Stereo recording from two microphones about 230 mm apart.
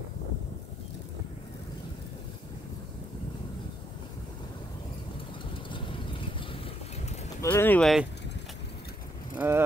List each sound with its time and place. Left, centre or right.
5.7 s vehicle: left
7.4 s speech: centre
9.4 s speech: centre